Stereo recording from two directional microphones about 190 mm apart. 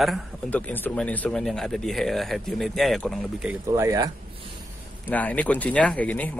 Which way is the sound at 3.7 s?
20° right (ahead or behind).